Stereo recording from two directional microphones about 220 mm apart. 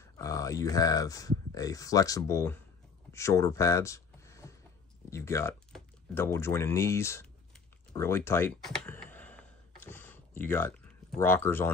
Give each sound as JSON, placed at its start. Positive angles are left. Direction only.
{"t": 0.2, "sound": "speech", "side_deg": 15}
{"t": 3.1, "sound": "a sound", "side_deg": 15}
{"t": 5.1, "sound": "speech", "side_deg": 10}
{"t": 7.9, "sound": "computer keyboard", "side_deg": 10}